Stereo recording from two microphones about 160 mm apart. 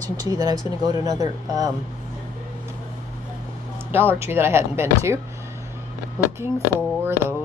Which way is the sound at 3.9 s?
15° right (ahead or behind).